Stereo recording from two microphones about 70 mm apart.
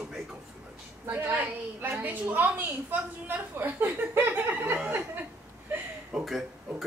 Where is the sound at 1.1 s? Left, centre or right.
Right.